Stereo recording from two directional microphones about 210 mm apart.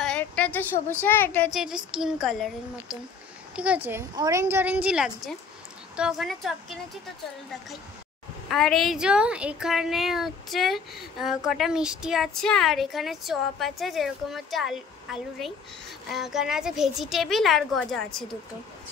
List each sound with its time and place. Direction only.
0.0 s a sound: 5° left (ahead or behind)
1.0 s a child's voice: 10° left (ahead or behind)
1.5 s a woman's voice: centre (ahead or behind)
4.1 s a woman's voice: 15° right (ahead or behind); by 6.8 s centre (ahead or behind)
8.5 s a woman's voice: centre (ahead or behind)